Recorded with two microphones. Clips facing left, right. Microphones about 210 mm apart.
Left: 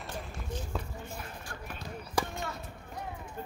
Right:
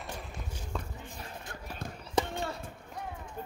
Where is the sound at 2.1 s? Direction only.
30° right (ahead or behind).